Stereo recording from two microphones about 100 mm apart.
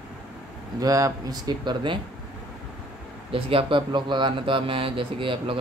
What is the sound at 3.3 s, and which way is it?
A man's voice, 60° right (ahead or behind).